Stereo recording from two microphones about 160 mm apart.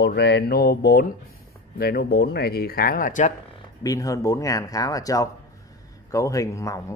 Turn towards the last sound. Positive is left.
turn(degrees=20)  # may be behind; listen again after turning